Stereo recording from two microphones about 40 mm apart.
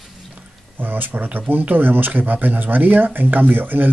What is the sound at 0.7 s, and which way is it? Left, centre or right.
Speech, right.